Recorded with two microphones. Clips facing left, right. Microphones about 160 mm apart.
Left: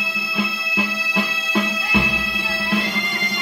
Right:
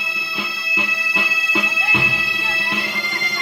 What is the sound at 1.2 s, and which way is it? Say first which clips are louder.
Music: left 3 dB; centre (ahead or behind).